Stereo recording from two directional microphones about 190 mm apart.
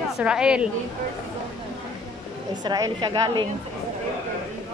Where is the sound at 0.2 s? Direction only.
5° right (ahead or behind).